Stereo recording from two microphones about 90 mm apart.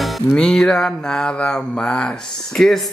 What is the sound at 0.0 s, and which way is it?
Music, 10° left (ahead or behind).